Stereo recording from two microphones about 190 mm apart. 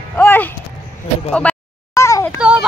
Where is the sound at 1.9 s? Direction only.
15° left (ahead or behind).